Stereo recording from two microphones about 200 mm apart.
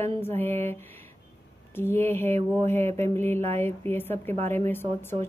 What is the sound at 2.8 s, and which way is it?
Mantra, 30° right (ahead or behind).